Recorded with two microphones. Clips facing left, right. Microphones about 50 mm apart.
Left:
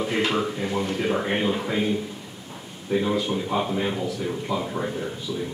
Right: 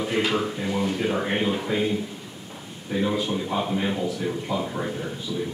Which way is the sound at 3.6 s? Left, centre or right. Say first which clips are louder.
Even; centre.